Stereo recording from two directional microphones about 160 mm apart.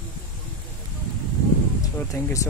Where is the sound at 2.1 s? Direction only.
20° left (ahead or behind).